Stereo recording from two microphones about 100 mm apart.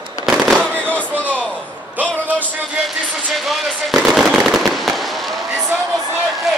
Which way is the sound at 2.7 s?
Centre (ahead or behind).